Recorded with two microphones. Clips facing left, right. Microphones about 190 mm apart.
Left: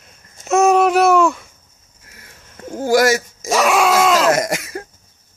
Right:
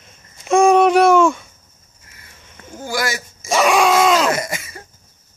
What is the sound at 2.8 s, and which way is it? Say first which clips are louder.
Speech: left 9 dB; 40° left (ahead or behind).